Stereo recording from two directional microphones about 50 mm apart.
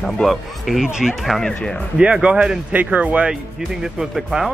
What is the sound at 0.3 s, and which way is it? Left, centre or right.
Speech, centre.